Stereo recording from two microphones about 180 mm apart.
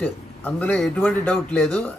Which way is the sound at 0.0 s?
10° left (ahead or behind).